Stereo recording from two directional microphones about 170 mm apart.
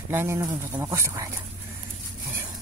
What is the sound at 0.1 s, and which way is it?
Speech, 15° right (ahead or behind).